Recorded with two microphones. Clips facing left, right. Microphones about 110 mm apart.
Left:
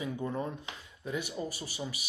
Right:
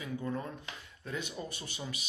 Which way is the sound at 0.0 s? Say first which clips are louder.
Left 2 dB; 20° left (ahead or behind).